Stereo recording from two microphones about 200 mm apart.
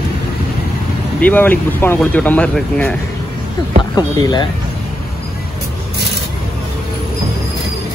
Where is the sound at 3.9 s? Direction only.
20° left (ahead or behind).